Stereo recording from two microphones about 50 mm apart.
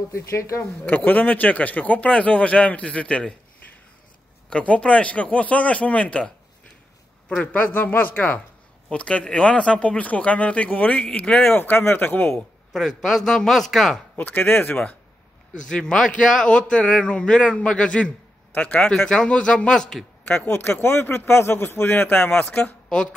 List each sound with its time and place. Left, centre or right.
0.1 s speech: left
0.8 s speech: left
4.5 s speech: left
7.5 s speech: left
8.9 s speech: left
11.5 s speech: left
12.3 s a man's voice: centre
14.1 s speech: left
15.7 s a man's voice: centre
20.4 s a man's voice: left